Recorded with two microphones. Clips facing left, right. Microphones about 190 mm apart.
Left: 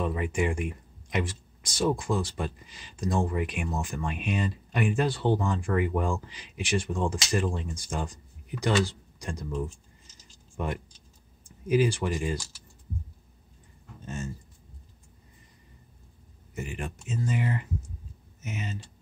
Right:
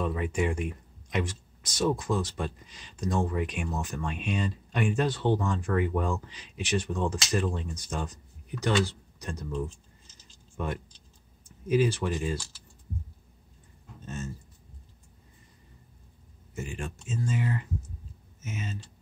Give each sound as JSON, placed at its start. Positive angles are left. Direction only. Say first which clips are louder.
{"t": 0.0, "sound": "speech", "louder": "left 1 dB", "side_deg": 10}
{"t": 14.0, "sound": "speech", "louder": "left 1 dB", "side_deg": 15}
{"t": 16.5, "sound": "speech", "louder": "left 1 dB", "side_deg": 15}